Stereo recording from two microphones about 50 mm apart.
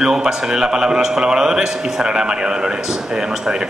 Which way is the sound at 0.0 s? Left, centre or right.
Centre.